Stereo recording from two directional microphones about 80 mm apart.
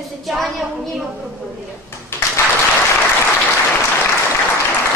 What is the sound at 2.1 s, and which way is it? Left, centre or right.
Applause, left.